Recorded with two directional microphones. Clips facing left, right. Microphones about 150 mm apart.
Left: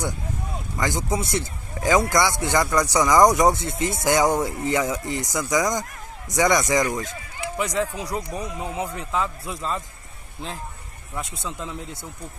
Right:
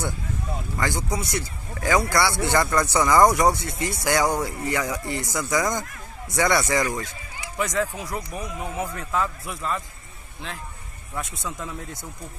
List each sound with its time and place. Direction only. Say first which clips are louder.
0.7 s speech: left 3 dB; 15° left (ahead or behind)
9.4 s speech: even; 30° left (ahead or behind)
11.3 s speech: left 1 dB; 20° left (ahead or behind)